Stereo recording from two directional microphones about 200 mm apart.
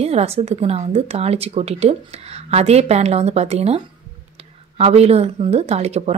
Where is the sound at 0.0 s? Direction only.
30° right (ahead or behind).